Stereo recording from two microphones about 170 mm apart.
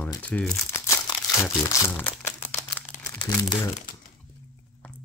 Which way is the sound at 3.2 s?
20° left (ahead or behind).